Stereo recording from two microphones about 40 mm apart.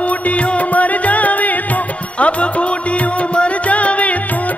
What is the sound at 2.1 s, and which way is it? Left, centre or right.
Music, left.